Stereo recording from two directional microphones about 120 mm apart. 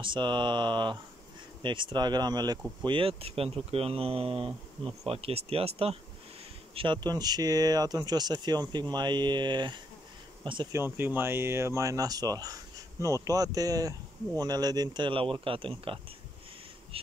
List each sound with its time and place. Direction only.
0.0 s speech: 40° right (ahead or behind)
2.8 s speech: 45° right (ahead or behind)
10.7 s speech: 20° right (ahead or behind); by 16.0 s 50° right (ahead or behind)
16.9 s a sound: 50° right (ahead or behind)